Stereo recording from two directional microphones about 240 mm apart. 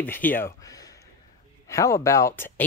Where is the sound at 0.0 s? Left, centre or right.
Centre.